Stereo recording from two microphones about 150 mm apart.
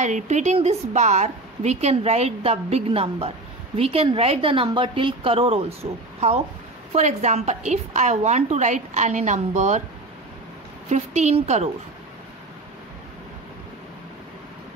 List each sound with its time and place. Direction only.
0.0 s a woman's voice: 55° right (ahead or behind)
10.9 s a woman's voice: 50° right (ahead or behind)